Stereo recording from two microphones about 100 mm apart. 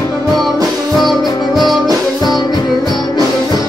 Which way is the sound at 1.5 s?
Centre (ahead or behind).